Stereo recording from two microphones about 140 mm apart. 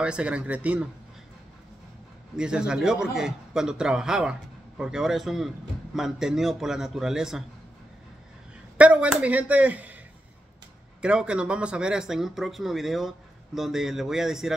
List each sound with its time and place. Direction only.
0.0 s speech: 5° right (ahead or behind)
2.3 s a man's voice: 5° right (ahead or behind)
8.7 s speech: 10° right (ahead or behind)
11.0 s a man's voice: 5° right (ahead or behind)